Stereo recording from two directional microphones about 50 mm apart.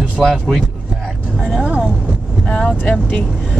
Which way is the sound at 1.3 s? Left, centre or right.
Centre.